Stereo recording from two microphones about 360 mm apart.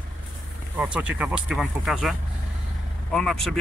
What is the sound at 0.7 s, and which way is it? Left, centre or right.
Speech, centre.